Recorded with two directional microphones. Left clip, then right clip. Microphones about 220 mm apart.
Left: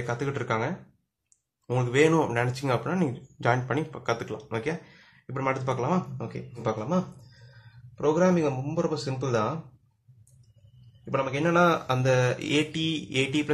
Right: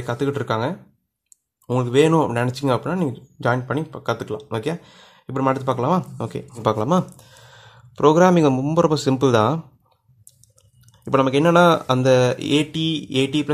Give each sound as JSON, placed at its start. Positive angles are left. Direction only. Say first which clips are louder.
{"t": 0.0, "sound": "a man's voice", "louder": "right 7 dB", "side_deg": -35}
{"t": 11.1, "sound": "speech", "louder": "right 10 dB", "side_deg": -45}